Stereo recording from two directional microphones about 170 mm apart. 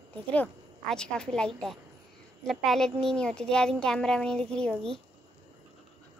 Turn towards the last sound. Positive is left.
turn(degrees=5)  # may be behind; listen again after turning